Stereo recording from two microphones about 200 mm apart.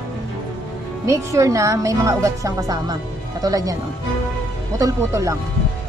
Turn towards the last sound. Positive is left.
turn(degrees=-15)  # may be behind; listen again after turning